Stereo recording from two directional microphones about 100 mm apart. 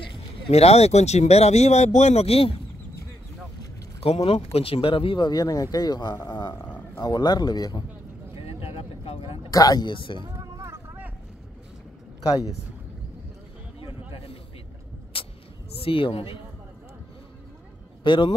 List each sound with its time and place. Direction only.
0.0 s speech: 75° left (ahead or behind)
4.0 s speech: 80° left; by 6.1 s 45° left (ahead or behind)
6.1 s speech: 25° left (ahead or behind)
7.0 s speech: 45° left (ahead or behind)
8.4 s vehicle: 65° left (ahead or behind)
9.5 s speech: 40° left (ahead or behind); by 10.2 s 55° left (ahead or behind)
10.2 s a sound: 30° right (ahead or behind)
15.1 s vehicle: 65° left (ahead or behind)
15.7 s speech: 65° left (ahead or behind)
18.0 s speech: 55° left (ahead or behind)